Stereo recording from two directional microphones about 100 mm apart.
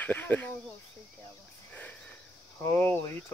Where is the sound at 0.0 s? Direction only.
15° left (ahead or behind).